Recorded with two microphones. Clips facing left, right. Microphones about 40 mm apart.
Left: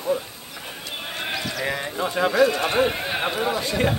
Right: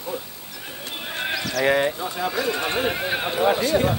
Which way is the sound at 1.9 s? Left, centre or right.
Left.